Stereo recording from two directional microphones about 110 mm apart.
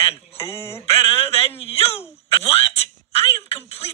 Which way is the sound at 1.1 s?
60° left (ahead or behind).